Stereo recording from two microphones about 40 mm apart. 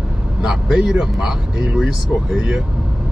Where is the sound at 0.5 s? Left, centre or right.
Centre.